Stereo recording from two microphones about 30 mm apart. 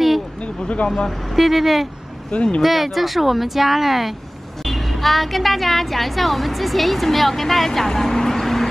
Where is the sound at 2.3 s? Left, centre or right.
Left.